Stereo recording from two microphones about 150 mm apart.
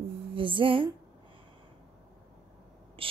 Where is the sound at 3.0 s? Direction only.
35° right (ahead or behind).